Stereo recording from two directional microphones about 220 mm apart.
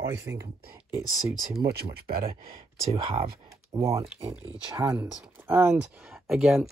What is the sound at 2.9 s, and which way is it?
Speech, 25° right (ahead or behind).